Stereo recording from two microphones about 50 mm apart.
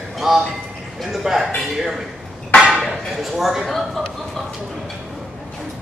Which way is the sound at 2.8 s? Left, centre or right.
Centre.